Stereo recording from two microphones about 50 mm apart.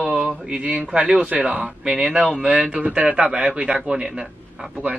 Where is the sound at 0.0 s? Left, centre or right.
Centre.